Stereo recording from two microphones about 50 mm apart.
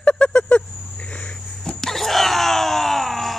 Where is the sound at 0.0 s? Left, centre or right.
Centre.